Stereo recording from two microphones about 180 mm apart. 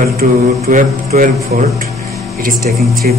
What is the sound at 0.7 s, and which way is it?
Mantra, 50° right (ahead or behind).